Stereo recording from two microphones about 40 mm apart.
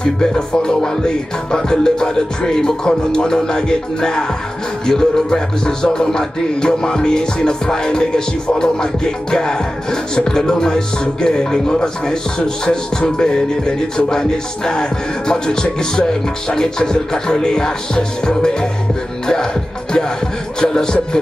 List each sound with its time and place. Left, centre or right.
0.0 s music: left
20.6 s music: centre